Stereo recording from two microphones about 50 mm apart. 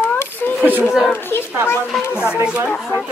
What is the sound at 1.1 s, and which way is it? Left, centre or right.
Speech, left.